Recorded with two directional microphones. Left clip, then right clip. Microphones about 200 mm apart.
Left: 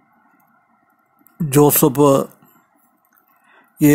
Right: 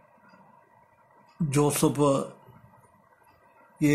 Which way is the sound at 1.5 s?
40° left (ahead or behind).